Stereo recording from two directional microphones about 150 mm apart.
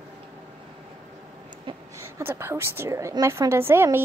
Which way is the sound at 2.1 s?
15° right (ahead or behind).